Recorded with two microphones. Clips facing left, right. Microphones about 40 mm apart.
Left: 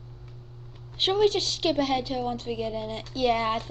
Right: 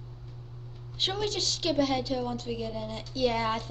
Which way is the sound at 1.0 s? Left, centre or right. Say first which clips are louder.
Left 8 dB; left.